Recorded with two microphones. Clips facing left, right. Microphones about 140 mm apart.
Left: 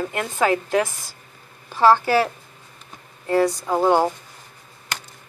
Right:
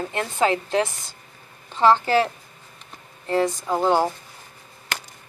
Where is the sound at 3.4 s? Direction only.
10° left (ahead or behind).